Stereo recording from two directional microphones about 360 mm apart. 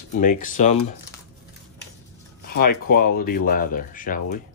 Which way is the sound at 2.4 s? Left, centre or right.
Left.